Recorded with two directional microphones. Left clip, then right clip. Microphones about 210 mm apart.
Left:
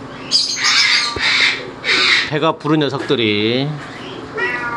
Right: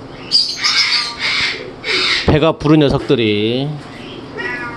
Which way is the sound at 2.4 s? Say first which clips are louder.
Right 4 dB; 25° right (ahead or behind).